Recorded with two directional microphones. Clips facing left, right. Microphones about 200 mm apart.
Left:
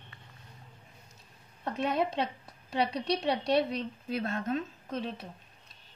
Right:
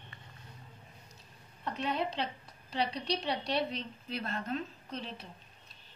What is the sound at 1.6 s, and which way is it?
A woman's voice, 50° left (ahead or behind).